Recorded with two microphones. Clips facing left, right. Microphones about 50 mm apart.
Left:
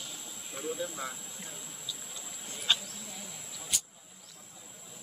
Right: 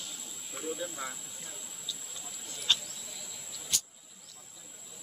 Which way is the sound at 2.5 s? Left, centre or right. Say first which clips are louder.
Left 1 dB; centre.